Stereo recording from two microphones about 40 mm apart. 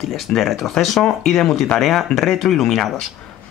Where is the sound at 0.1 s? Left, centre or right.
Centre.